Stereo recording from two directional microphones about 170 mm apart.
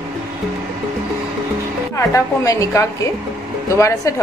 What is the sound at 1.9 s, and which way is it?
A woman's voice, 20° left (ahead or behind).